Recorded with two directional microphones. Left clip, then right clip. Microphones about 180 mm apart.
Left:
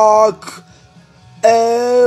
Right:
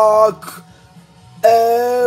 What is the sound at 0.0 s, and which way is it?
Speech, 15° left (ahead or behind).